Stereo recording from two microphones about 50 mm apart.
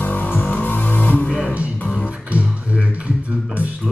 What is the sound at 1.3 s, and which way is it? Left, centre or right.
Music, centre.